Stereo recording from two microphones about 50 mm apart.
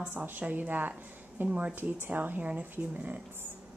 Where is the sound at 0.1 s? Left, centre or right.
Right.